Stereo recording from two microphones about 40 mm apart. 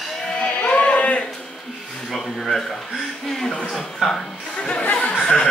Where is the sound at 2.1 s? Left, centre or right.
Centre.